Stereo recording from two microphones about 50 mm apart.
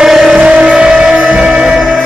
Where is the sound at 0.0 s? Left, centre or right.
Centre.